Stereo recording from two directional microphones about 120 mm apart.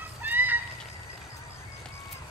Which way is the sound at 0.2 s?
15° right (ahead or behind).